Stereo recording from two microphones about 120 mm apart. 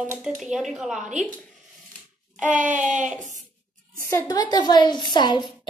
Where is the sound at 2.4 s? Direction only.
10° right (ahead or behind).